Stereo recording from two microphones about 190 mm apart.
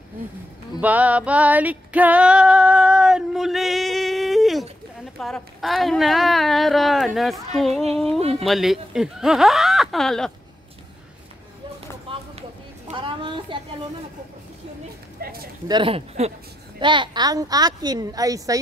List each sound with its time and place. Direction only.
0.7 s female singing: 10° right (ahead or behind)
5.2 s speech: centre (ahead or behind)
12.1 s a sound: 30° right (ahead or behind)
15.1 s speech: 50° right (ahead or behind)
15.7 s a woman's voice: 30° right (ahead or behind)